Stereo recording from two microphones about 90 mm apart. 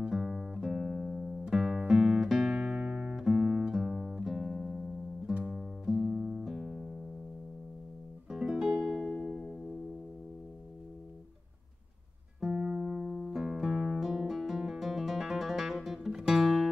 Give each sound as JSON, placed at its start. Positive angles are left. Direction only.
{"t": 0.0, "sound": "music", "side_deg": -5}
{"t": 5.3, "sound": "guitar", "side_deg": -10}
{"t": 8.3, "sound": "music", "side_deg": -5}
{"t": 9.1, "sound": "music", "side_deg": 10}
{"t": 12.4, "sound": "music", "side_deg": -10}